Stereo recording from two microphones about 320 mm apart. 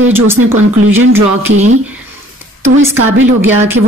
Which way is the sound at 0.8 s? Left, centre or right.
Right.